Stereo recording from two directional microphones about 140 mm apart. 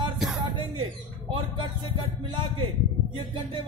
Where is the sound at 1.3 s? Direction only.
35° right (ahead or behind).